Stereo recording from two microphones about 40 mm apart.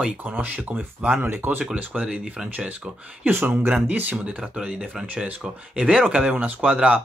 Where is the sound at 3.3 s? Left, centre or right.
Right.